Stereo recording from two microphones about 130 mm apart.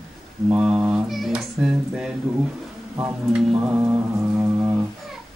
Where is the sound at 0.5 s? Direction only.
10° right (ahead or behind).